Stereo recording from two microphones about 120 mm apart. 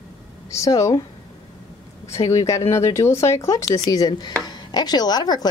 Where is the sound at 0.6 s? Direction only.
25° left (ahead or behind).